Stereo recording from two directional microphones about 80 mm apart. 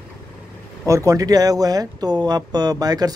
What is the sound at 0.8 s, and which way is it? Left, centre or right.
Speech, right.